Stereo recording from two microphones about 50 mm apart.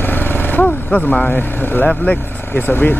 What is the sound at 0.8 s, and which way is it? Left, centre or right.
Speech, centre.